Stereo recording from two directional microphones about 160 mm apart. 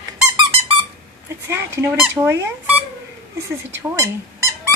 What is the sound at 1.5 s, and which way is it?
Fowl, 15° right (ahead or behind).